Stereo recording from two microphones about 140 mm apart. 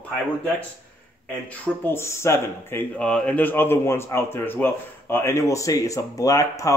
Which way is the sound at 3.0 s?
5° left (ahead or behind).